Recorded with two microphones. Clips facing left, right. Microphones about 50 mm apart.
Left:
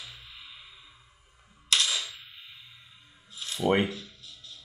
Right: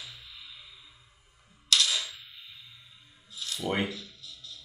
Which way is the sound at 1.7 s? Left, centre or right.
Left.